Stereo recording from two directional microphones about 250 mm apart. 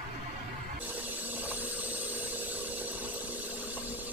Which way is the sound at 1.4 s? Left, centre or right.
Centre.